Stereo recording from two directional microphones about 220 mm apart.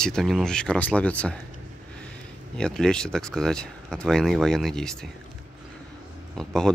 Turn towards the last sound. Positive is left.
turn(degrees=0)  # may be behind; listen again after turning